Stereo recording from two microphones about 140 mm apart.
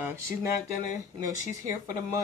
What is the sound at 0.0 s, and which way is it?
Speech, 20° right (ahead or behind).